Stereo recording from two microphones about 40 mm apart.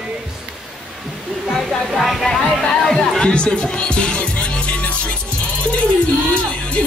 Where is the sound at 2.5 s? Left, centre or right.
Centre.